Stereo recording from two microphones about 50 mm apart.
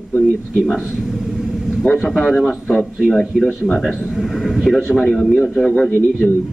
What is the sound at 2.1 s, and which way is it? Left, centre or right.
Speech, centre.